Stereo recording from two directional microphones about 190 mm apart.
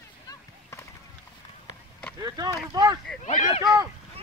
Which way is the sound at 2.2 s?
20° right (ahead or behind).